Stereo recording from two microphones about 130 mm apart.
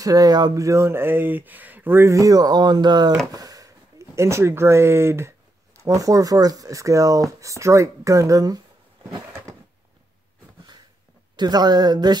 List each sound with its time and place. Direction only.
0.0 s speech: 30° right (ahead or behind)
11.3 s speech: 35° right (ahead or behind)